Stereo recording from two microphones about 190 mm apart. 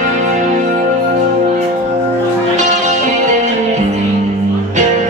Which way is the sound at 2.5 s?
40° right (ahead or behind).